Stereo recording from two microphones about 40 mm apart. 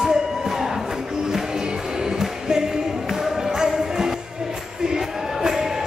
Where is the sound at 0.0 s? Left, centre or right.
Centre.